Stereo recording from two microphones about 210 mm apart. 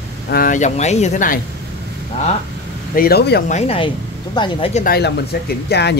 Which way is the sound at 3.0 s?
50° left (ahead or behind).